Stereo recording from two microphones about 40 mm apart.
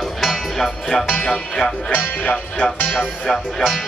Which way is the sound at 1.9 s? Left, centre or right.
Left.